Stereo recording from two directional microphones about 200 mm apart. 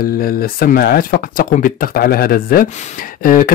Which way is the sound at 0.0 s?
45° left (ahead or behind).